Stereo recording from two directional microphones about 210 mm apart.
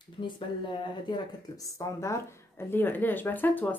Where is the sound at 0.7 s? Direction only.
20° left (ahead or behind).